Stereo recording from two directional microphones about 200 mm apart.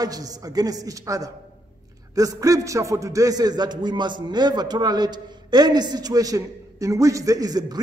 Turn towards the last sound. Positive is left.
turn(degrees=-20)  # may be behind; listen again after turning